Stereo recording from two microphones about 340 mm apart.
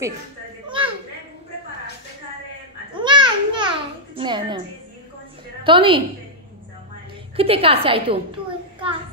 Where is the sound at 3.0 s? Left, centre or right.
Centre.